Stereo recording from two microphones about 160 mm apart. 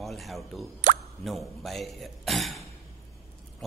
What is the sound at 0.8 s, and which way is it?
Speech, 55° right (ahead or behind).